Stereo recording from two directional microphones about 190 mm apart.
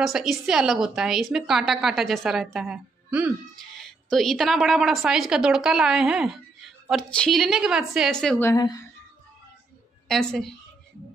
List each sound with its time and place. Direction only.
0.0 s a woman's voice: centre (ahead or behind)
8.5 s a woman's voice: 20° left (ahead or behind)
10.0 s a woman's voice: centre (ahead or behind)